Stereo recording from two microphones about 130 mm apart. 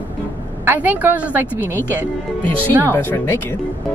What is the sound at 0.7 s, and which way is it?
Speech, 15° right (ahead or behind).